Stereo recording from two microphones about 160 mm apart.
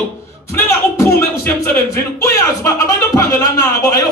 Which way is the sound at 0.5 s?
15° left (ahead or behind).